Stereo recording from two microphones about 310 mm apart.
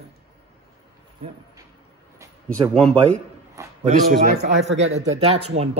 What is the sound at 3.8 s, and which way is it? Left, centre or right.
Speech, right.